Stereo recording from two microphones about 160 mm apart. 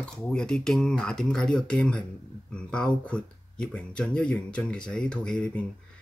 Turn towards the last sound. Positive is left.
turn(degrees=5)  # may be behind; listen again after turning